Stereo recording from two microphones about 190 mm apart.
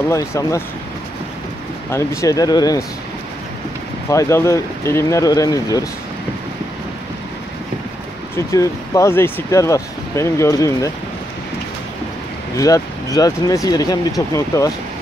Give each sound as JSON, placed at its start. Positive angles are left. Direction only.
{"t": 0.1, "sound": "speech", "side_deg": 15}
{"t": 1.9, "sound": "speech", "side_deg": 15}
{"t": 4.1, "sound": "speech", "side_deg": 15}
{"t": 8.5, "sound": "speech", "side_deg": 15}
{"t": 12.5, "sound": "speech", "side_deg": 15}